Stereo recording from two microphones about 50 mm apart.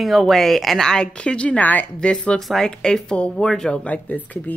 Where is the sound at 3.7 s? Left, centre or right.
Left.